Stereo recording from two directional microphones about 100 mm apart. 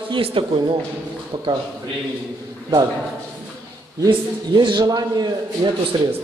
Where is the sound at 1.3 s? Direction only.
45° right (ahead or behind).